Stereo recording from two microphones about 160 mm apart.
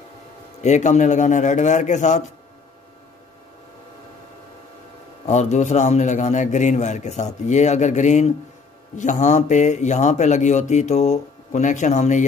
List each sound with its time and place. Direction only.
0.6 s speech: 45° left (ahead or behind)
5.2 s speech: 45° left (ahead or behind)